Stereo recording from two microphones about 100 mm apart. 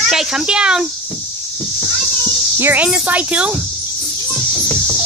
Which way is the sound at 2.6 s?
15° right (ahead or behind).